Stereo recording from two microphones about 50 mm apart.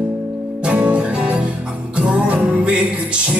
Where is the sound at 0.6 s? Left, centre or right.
Right.